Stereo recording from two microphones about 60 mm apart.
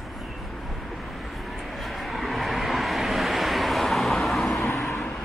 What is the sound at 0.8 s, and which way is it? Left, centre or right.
Vehicle, centre.